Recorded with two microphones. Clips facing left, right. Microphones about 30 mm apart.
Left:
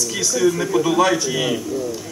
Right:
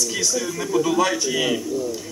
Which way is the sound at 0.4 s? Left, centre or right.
Centre.